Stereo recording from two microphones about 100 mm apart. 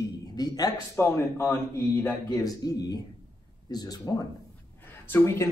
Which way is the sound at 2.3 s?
40° left (ahead or behind).